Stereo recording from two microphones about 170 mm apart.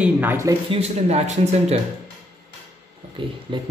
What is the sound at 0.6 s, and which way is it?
Speech, 35° right (ahead or behind).